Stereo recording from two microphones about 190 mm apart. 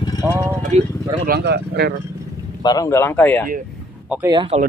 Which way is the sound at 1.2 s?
60° right (ahead or behind).